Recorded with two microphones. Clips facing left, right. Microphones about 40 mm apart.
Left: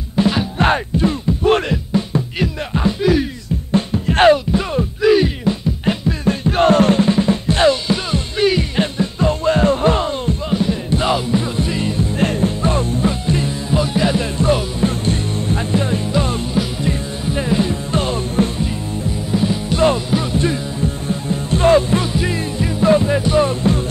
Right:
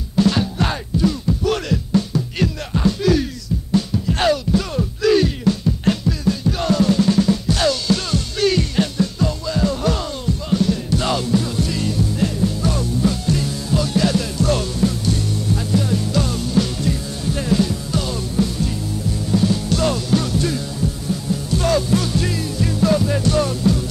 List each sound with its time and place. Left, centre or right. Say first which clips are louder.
0.1 s music: even; left
0.6 s music: left 5 dB; left
2.3 s music: left 1 dB; centre
3.7 s music: left 4 dB; left
4.6 s music: left 3 dB; left
6.2 s music: left 7 dB; left
7.1 s music: left 1 dB; left
9.4 s music: left 9 dB; left
19.3 s music: even; left